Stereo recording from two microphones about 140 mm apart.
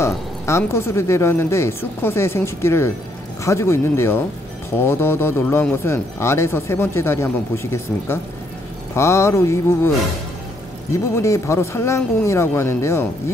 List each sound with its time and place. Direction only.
0.0 s speech: 20° left (ahead or behind)